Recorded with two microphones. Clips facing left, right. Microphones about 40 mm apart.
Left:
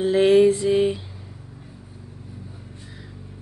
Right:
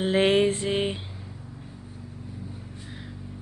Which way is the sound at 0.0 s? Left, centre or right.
Right.